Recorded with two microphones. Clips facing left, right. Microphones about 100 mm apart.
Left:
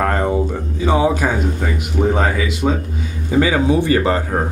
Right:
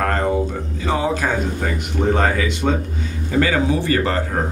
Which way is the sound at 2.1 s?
5° left (ahead or behind).